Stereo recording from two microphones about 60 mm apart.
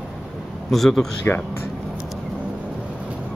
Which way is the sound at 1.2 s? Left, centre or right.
Left.